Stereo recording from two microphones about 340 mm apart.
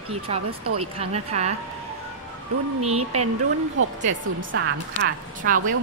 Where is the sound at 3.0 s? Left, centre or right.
Right.